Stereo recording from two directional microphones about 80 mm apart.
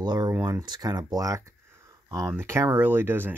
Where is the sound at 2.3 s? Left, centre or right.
Right.